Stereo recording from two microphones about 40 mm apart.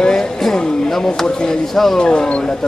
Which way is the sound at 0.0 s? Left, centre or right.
Centre.